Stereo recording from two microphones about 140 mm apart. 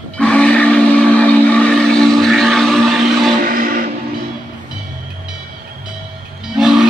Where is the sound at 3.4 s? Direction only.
90° right.